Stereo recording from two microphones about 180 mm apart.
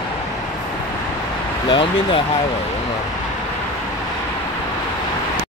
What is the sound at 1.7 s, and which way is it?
Speech, 30° left (ahead or behind).